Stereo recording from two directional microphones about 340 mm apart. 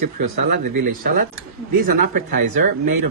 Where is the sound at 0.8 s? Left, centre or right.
Right.